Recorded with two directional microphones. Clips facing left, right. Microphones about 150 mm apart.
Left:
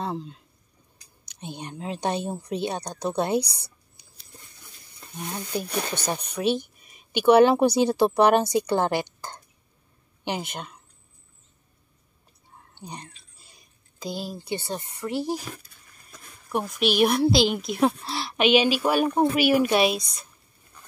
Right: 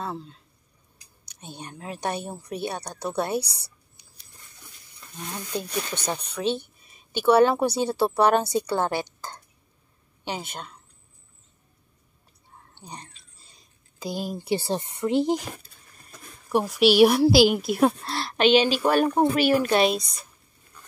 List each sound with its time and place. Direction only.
0.0 s speech: 15° left (ahead or behind)
5.1 s speech: 10° left (ahead or behind)
12.7 s a sound: 15° left (ahead or behind)
14.1 s speech: 50° right (ahead or behind)
14.4 s speech: 30° right (ahead or behind)
16.5 s a woman's voice: 10° right (ahead or behind)